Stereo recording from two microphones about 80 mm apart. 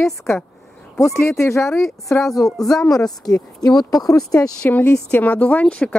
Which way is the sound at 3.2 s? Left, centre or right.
Left.